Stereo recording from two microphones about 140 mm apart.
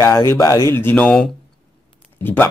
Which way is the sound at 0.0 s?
20° left (ahead or behind).